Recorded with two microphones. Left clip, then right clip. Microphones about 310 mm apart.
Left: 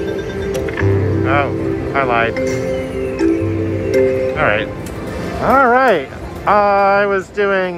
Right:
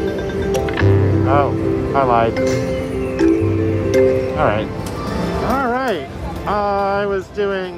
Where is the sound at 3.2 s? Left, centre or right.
Centre.